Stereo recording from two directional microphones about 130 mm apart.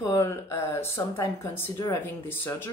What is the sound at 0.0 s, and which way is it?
Speech, 25° left (ahead or behind).